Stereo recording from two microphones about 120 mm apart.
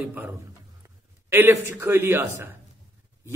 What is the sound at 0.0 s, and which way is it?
Speech, 15° right (ahead or behind).